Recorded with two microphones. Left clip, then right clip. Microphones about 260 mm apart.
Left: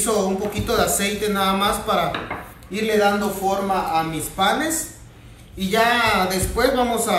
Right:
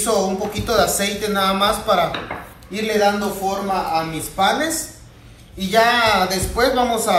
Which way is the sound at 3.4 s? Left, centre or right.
Centre.